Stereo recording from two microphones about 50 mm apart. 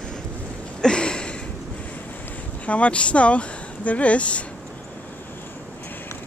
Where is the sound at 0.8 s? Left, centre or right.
Centre.